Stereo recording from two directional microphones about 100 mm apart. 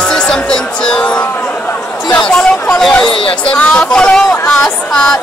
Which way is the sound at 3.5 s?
10° left (ahead or behind).